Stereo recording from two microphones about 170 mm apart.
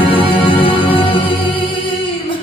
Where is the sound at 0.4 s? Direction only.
30° left (ahead or behind).